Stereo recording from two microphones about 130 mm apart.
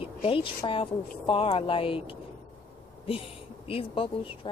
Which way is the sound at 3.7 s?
45° left (ahead or behind).